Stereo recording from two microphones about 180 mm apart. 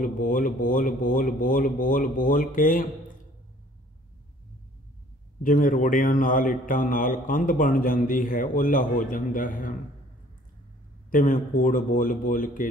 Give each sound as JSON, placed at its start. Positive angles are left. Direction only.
{"t": 0.0, "sound": "a man's voice", "side_deg": 50}
{"t": 5.4, "sound": "a man's voice", "side_deg": 50}
{"t": 11.1, "sound": "a man's voice", "side_deg": 50}